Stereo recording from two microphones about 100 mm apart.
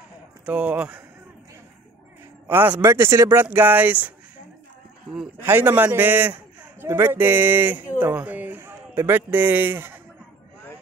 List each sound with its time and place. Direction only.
0.5 s speech: 15° right (ahead or behind)
2.4 s speech: 20° right (ahead or behind)
5.4 s a man's voice: 25° right (ahead or behind)